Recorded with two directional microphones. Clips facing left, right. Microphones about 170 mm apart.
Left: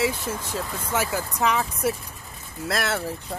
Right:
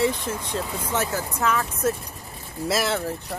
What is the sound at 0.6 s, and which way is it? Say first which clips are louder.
Speech: right 2 dB; 10° right (ahead or behind).